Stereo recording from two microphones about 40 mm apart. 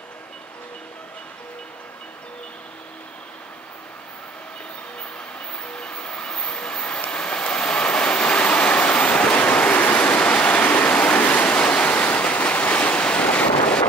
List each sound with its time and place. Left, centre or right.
5.6 s vehicle: left
7.1 s waves: left
9.5 s vehicle: left
11.5 s waves: left